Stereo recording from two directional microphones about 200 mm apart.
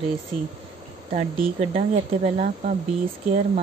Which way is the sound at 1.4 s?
30° right (ahead or behind).